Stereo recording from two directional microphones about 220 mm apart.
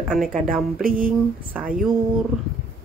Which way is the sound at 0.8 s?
40° right (ahead or behind).